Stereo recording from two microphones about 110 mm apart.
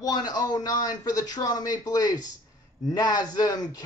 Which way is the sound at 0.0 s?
35° left (ahead or behind).